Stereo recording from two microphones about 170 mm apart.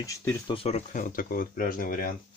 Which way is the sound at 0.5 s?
35° left (ahead or behind).